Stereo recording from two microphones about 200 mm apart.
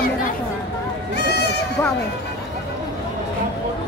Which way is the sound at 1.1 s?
55° left (ahead or behind).